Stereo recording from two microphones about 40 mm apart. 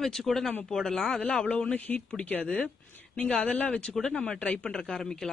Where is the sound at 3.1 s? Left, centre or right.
Left.